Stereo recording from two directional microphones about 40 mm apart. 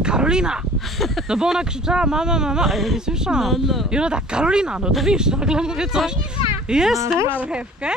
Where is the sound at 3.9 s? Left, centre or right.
Right.